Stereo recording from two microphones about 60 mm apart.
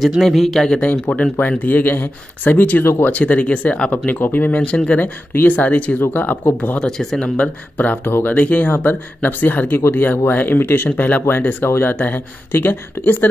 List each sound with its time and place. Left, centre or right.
0.2 s speech: centre
0.7 s speech: centre
1.6 s speech: left
2.8 s speech: left
3.1 s speech: left
4.6 s speech: centre
6.8 s speech: centre
7.7 s speech: left